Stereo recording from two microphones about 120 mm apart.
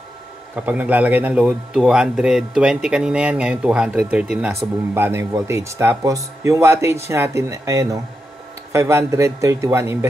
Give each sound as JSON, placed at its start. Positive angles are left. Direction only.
{"t": 0.6, "sound": "a man's voice", "side_deg": -15}